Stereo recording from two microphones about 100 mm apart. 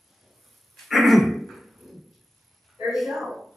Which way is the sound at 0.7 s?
Centre (ahead or behind).